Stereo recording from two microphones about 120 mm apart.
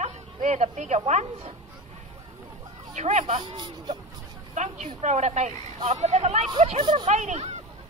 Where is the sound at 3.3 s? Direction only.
45° right (ahead or behind).